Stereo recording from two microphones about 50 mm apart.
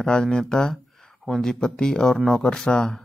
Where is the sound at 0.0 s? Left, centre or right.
Centre.